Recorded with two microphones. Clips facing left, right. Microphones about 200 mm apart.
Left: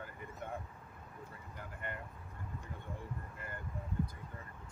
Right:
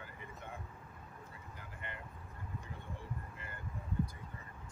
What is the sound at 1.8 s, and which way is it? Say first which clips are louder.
Vehicle: left 5 dB; 50° left (ahead or behind).